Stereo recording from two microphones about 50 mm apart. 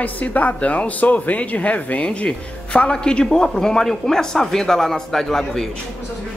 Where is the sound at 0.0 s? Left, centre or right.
Left; by 5.7 s centre.